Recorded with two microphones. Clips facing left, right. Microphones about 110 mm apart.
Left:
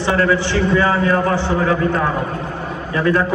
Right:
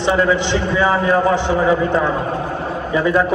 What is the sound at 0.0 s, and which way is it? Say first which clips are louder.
A man's voice: right 1 dB; 15° right (ahead or behind).